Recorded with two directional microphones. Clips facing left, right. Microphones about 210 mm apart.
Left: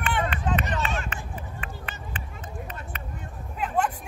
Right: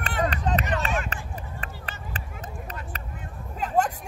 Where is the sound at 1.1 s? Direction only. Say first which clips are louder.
Even; 40° right (ahead or behind).